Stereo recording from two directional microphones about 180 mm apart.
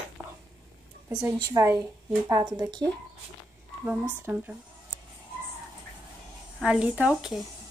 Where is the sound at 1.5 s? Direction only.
15° right (ahead or behind).